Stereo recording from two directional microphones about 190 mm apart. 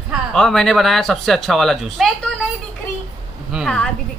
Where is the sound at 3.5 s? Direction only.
Centre (ahead or behind).